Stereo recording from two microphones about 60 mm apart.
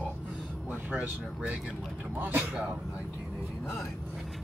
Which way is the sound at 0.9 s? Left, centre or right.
Right.